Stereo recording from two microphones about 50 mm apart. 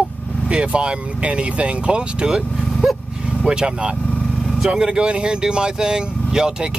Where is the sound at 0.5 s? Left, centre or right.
Centre.